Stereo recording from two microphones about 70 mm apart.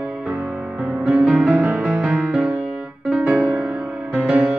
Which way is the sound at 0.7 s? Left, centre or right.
Right.